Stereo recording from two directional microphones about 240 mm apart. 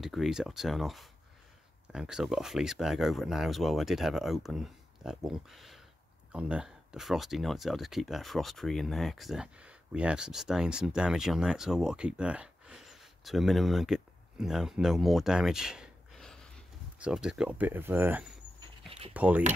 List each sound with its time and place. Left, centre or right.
0.0 s speech: centre
18.9 s a sound: right
19.1 s speech: centre